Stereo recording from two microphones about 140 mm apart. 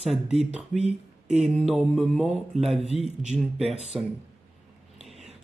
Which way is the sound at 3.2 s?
5° right (ahead or behind).